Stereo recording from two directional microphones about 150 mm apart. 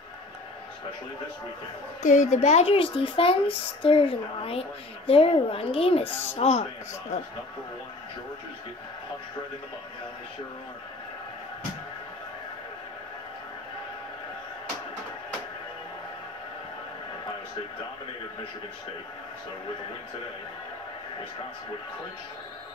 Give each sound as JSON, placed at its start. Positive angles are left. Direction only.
{"t": 2.0, "sound": "speech", "side_deg": 50}